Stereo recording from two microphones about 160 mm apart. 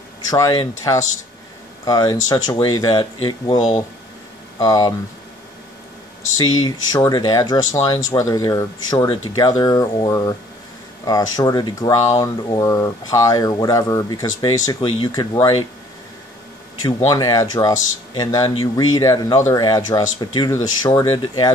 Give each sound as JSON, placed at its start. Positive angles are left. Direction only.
{"t": 0.3, "sound": "speech", "side_deg": 25}
{"t": 6.3, "sound": "speech", "side_deg": 25}
{"t": 17.1, "sound": "speech", "side_deg": 25}